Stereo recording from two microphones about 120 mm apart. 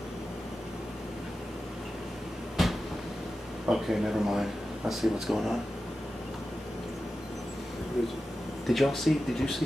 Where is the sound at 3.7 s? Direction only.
5° right (ahead or behind).